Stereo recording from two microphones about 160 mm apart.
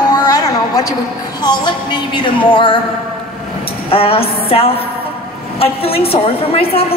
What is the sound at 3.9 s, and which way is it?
A woman's voice, 35° left (ahead or behind).